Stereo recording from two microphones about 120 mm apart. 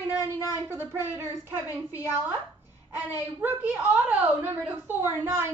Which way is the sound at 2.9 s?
15° right (ahead or behind).